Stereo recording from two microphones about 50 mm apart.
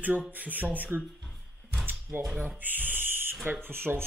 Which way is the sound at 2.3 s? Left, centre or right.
Right.